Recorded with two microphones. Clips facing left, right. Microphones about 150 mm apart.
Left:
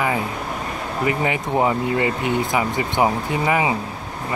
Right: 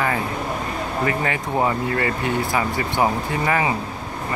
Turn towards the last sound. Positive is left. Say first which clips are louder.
# left 1 dB
turn(degrees=15)  # may be behind; listen again after turning